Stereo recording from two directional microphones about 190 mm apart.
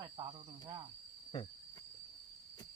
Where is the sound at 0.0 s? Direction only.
25° right (ahead or behind).